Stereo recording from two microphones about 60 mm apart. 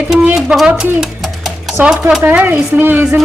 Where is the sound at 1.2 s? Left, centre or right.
Centre.